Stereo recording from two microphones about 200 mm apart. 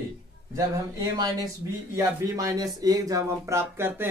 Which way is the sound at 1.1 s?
20° right (ahead or behind).